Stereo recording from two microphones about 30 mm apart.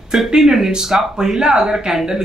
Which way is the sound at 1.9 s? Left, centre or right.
Centre.